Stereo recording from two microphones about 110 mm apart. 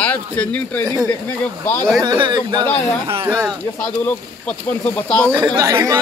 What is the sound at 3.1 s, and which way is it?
Speech, 25° right (ahead or behind).